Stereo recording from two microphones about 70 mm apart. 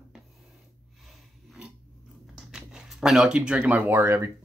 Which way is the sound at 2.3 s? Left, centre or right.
Centre.